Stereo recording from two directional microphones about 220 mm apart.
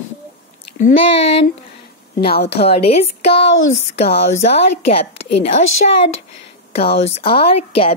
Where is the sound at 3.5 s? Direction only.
60° left (ahead or behind).